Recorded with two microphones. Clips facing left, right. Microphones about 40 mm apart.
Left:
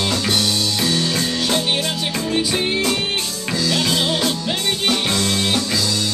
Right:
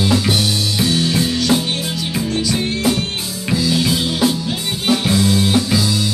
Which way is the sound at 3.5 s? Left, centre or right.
Centre.